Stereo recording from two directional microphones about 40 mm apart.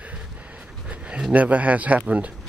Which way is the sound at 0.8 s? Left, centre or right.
Right.